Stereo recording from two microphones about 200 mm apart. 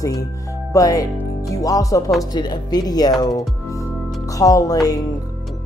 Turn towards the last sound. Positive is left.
turn(degrees=20)  # may be behind; listen again after turning